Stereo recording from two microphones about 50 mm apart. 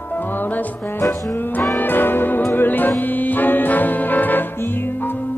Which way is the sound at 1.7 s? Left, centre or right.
Left.